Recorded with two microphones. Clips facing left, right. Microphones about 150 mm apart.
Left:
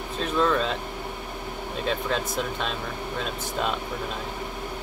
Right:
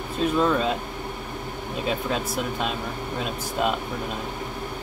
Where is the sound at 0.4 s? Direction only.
10° right (ahead or behind).